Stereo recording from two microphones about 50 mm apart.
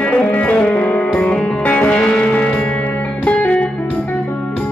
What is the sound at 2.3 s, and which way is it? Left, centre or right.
Music, left.